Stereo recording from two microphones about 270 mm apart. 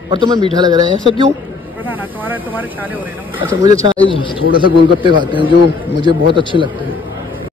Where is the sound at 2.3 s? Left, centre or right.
Centre.